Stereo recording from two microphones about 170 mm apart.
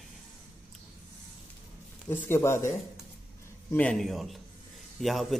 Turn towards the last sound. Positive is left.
turn(degrees=0)  # may be behind; listen again after turning